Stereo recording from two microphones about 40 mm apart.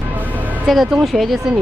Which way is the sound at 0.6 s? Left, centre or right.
Centre.